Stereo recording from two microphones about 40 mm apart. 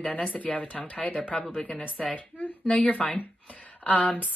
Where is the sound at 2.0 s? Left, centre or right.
Left.